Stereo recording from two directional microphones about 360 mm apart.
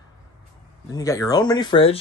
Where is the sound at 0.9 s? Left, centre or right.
Centre.